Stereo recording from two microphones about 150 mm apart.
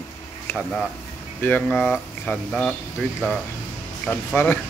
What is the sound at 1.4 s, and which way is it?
Speech, 10° left (ahead or behind).